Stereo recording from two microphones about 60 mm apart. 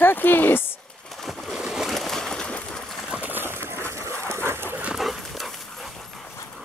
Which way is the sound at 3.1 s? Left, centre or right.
Right.